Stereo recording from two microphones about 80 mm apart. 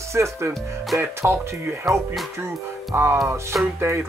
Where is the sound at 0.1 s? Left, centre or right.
Right.